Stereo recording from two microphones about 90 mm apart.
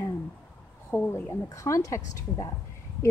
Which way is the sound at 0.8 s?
25° left (ahead or behind).